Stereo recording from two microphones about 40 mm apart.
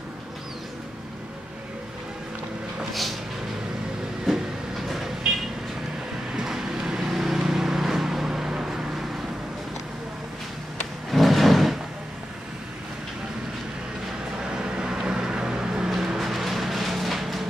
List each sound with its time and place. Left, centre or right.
4.3 s train: centre
5.2 s vehicle: centre
11.1 s drawer open or close: centre
14.6 s vehicle: centre
16.2 s music: centre